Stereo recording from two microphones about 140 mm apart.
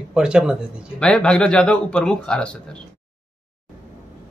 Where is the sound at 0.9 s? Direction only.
5° left (ahead or behind).